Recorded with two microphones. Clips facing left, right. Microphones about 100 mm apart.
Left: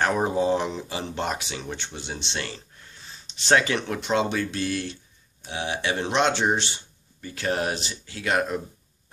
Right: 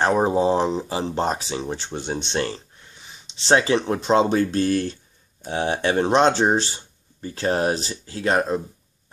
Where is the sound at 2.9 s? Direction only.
15° right (ahead or behind).